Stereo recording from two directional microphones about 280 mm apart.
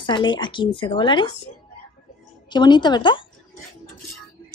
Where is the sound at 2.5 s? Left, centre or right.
Centre.